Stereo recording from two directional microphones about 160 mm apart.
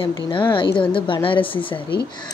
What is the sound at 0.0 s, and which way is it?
A woman's voice, 30° left (ahead or behind).